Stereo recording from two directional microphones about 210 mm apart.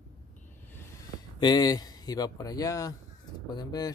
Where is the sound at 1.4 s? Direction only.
20° left (ahead or behind).